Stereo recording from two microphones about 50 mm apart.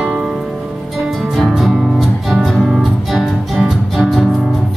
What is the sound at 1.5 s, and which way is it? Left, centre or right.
Music, centre.